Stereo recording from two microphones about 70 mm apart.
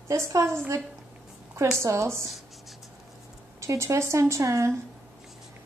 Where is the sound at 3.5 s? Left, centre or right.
Right.